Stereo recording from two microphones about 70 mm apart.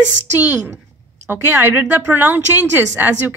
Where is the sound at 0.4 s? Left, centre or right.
Right.